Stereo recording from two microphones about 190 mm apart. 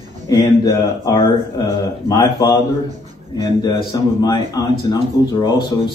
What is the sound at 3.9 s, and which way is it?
A man's voice, 20° left (ahead or behind).